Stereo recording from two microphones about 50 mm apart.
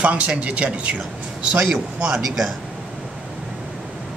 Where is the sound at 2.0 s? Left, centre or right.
Centre.